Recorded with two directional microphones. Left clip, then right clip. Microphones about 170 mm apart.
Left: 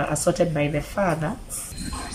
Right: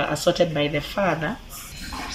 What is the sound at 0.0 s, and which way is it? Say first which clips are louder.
Speech: right 1 dB; 10° left (ahead or behind).